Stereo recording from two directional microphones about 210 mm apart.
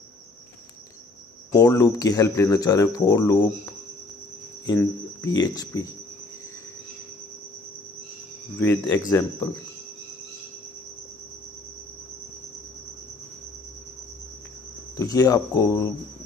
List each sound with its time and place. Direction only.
1.5 s speech: 15° left (ahead or behind)
8.5 s speech: 10° left (ahead or behind)
15.0 s speech: 15° left (ahead or behind)